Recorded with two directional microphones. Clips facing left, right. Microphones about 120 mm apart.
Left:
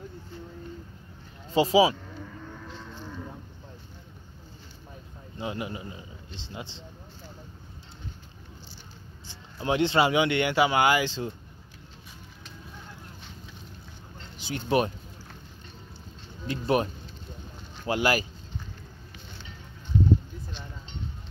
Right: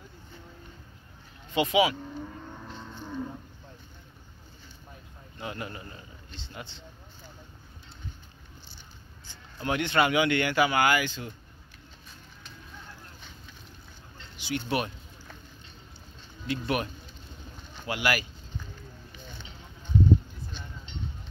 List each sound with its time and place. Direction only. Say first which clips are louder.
1.5 s speech: left 4 dB; 30° left (ahead or behind)
3.0 s livestock: right 7 dB; 15° right (ahead or behind)
5.4 s a man's voice: left 4 dB; 20° left (ahead or behind)
9.2 s speech: left 2 dB; 25° left (ahead or behind)
14.3 s speech: left 4 dB; 35° left (ahead or behind)
16.4 s speech: left 4 dB; 30° left (ahead or behind)